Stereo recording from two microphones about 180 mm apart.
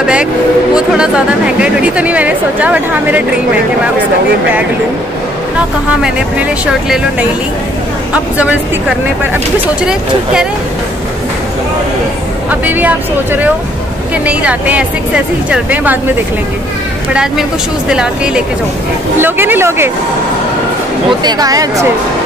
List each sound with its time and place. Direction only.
0.7 s speech: 5° right (ahead or behind)
6.0 s speech: 5° right (ahead or behind)
12.4 s speech: 10° right (ahead or behind)
17.1 s speech: 5° right (ahead or behind)
21.2 s speech: 20° right (ahead or behind)